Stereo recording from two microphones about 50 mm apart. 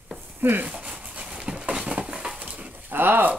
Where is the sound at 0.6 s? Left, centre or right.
Right.